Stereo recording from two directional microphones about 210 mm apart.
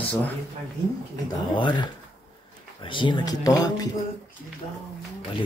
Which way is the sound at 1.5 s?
20° left (ahead or behind).